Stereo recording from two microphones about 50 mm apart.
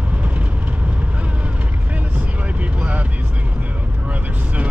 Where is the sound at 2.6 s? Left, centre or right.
Right.